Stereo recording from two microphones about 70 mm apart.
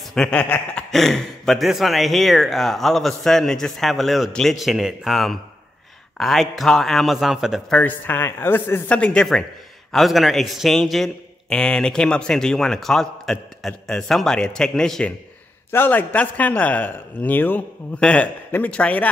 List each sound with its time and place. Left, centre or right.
0.1 s speech: centre
0.9 s speech: centre
7.7 s a man's voice: left
8.8 s a man's voice: centre
9.9 s a man's voice: centre
15.7 s a man's voice: left